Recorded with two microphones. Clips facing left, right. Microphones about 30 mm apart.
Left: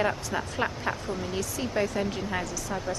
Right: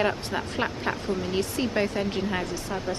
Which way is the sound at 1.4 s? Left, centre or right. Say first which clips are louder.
Right 2 dB; right.